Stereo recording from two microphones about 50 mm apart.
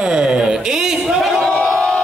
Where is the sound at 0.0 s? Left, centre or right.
Centre.